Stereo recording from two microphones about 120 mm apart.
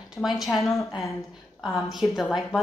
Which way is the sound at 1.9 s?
Centre (ahead or behind).